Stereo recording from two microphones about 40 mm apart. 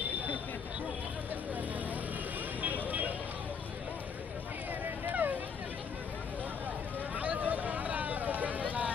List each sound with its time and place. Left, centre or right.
2.6 s vehicle: right
5.1 s vehicle: right
7.2 s vehicle: right